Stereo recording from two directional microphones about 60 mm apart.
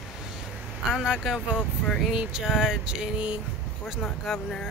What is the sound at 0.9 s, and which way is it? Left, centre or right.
Speech, centre.